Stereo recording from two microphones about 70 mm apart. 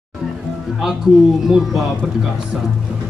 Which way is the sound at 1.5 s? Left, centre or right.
Centre.